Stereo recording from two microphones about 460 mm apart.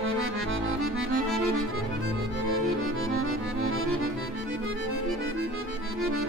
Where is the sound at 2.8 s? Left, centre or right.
Right.